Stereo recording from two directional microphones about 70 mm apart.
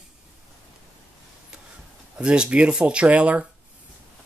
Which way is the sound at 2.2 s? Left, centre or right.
Centre.